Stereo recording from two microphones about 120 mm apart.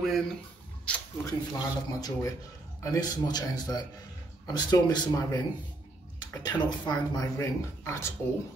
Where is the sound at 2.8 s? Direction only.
35° left (ahead or behind).